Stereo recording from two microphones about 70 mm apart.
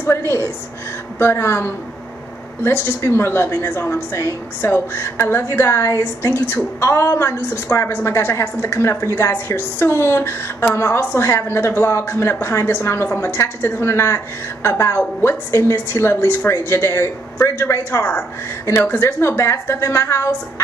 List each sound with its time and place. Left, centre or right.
0.0 s a woman's voice: left